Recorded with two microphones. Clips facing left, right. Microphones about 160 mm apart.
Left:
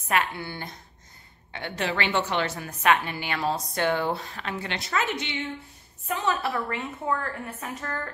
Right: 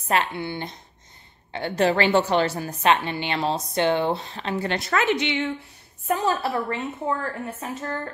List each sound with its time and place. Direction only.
0.1 s a woman's voice: 30° right (ahead or behind)
1.5 s a woman's voice: 35° right (ahead or behind)
4.6 s a woman's voice: 55° right (ahead or behind); by 5.5 s 85° right
6.0 s a woman's voice: 35° right (ahead or behind)